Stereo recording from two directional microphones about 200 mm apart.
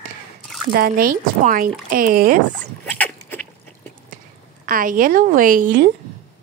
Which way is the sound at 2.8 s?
10° left (ahead or behind).